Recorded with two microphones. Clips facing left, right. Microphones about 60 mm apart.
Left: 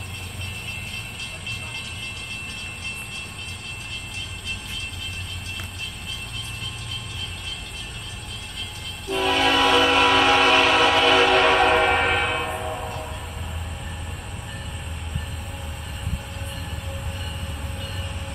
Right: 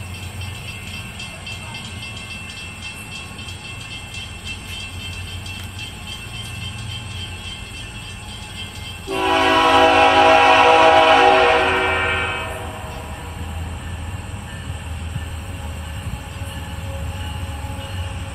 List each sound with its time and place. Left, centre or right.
9.1 s train: right
11.3 s train horn: centre